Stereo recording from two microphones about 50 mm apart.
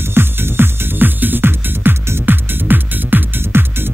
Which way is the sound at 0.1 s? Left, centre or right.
Right.